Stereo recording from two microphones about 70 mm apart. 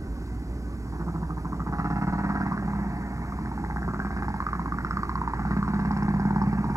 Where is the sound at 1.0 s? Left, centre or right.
Right.